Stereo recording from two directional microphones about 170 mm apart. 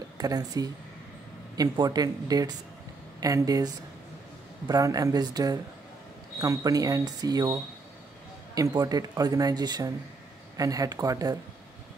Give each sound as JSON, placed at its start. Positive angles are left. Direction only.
{"t": 0.2, "sound": "speech", "side_deg": -20}